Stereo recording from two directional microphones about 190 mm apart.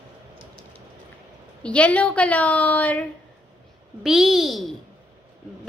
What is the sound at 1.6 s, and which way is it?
A woman's voice, 5° left (ahead or behind).